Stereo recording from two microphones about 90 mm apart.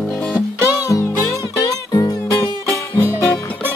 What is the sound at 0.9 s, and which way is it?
Music, 35° left (ahead or behind).